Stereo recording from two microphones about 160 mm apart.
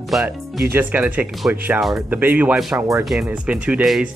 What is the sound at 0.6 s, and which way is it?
Speech, 15° right (ahead or behind).